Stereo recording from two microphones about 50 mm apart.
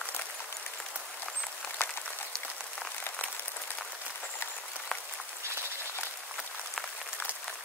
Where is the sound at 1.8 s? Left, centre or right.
Left.